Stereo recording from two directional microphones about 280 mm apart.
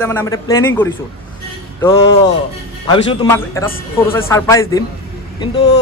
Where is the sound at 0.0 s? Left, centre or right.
Centre.